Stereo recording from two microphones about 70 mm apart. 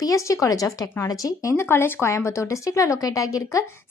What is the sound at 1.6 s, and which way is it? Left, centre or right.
A woman's voice, left.